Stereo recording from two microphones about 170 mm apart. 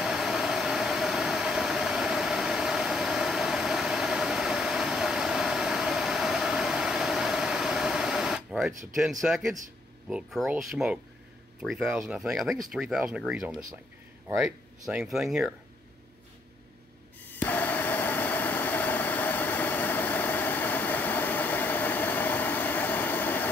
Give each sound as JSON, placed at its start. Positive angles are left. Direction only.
{"t": 0.0, "sound": "vehicle", "side_deg": 0}
{"t": 9.2, "sound": "speech", "side_deg": 0}
{"t": 17.4, "sound": "a sound", "side_deg": 10}